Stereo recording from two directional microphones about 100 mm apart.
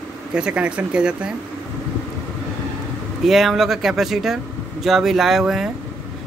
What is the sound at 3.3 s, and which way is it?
Speech, centre (ahead or behind).